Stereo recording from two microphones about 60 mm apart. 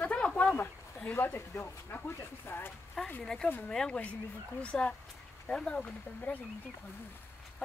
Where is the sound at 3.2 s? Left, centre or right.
Centre; by 6.3 s left.